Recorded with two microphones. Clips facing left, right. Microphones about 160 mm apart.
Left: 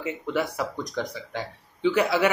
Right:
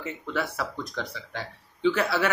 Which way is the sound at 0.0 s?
15° left (ahead or behind).